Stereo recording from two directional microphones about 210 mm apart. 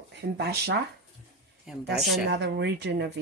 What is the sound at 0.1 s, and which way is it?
Speech, 50° right (ahead or behind).